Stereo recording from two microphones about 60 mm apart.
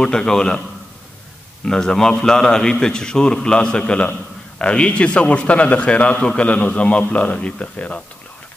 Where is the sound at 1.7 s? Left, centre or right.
Centre.